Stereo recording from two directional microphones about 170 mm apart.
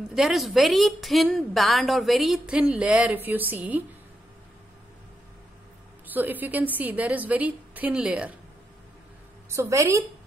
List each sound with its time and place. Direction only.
0.1 s a woman's voice: centre (ahead or behind)
6.1 s a woman's voice: 10° right (ahead or behind)
9.5 s a woman's voice: 15° right (ahead or behind)